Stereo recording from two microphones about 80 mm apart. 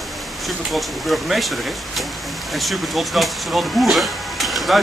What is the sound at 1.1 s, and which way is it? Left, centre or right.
Speech, centre.